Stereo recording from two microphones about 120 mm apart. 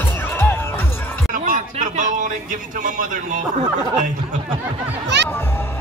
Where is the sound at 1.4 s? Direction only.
90° right.